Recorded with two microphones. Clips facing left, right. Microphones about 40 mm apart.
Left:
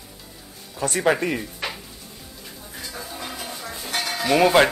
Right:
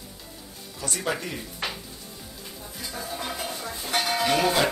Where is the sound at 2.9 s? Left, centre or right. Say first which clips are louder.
Right 2 dB; centre.